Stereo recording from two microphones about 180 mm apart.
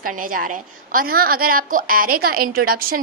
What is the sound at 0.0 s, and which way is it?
A woman's voice, 50° right (ahead or behind).